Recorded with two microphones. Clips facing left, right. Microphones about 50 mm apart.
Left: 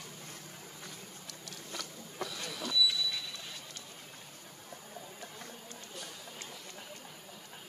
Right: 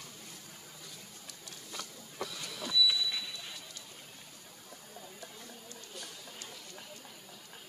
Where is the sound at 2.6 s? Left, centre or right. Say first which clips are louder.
Right 1 dB; centre.